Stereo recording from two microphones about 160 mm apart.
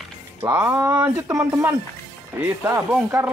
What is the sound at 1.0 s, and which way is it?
Speech, 15° right (ahead or behind).